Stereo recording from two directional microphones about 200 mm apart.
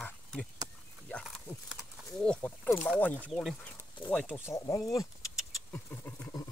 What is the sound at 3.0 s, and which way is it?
Speech, 10° left (ahead or behind).